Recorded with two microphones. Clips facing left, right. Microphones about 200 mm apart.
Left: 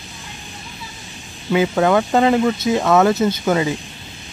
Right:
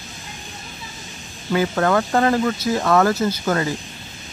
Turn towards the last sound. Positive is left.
turn(degrees=15)  # may be behind; listen again after turning